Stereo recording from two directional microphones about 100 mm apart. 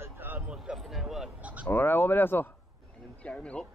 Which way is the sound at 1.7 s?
20° left (ahead or behind).